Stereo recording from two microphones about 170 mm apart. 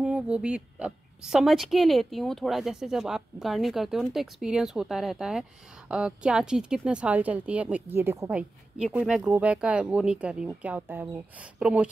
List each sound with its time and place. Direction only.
0.0 s a woman's voice: 5° right (ahead or behind)